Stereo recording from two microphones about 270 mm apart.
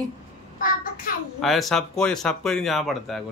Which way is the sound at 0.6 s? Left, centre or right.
Left.